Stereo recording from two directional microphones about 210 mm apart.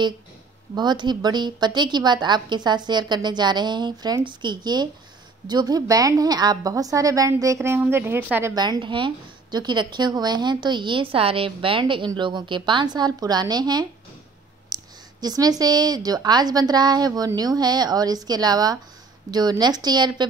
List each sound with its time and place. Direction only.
0.7 s a woman's voice: 20° right (ahead or behind)
14.7 s a sound: 20° right (ahead or behind)
15.6 s a woman's voice: 20° right (ahead or behind)